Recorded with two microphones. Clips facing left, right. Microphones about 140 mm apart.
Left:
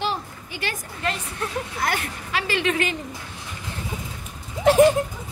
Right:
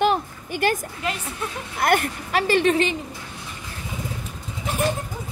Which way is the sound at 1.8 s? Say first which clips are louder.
Right 9 dB; 55° right (ahead or behind).